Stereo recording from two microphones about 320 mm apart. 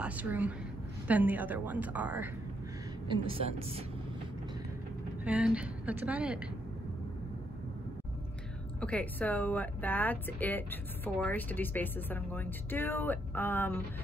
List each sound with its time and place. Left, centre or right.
0.0 s a woman's voice: centre
3.1 s a woman's voice: centre
5.2 s a woman's voice: centre
8.8 s a woman's voice: centre